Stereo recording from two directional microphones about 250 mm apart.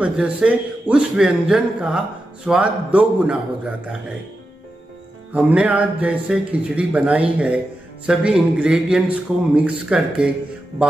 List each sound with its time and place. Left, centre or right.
0.0 s speech: centre
5.3 s speech: centre